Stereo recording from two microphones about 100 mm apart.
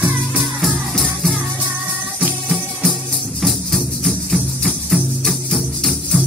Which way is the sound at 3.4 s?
Centre (ahead or behind).